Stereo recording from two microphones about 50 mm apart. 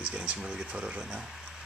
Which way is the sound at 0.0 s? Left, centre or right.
Right.